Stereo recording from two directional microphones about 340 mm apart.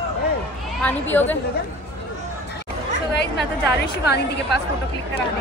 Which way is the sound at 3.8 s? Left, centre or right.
Left.